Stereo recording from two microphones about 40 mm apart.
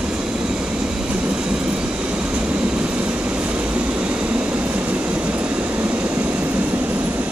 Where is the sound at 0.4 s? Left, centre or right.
Right.